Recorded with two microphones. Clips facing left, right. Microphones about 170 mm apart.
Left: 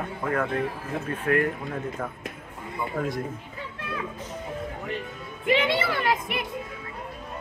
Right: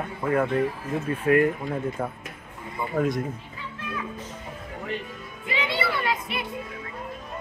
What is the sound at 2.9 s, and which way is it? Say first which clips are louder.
Speech: right 5 dB; 40° right (ahead or behind).